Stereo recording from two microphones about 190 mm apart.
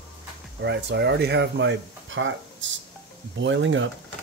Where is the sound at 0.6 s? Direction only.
60° right (ahead or behind).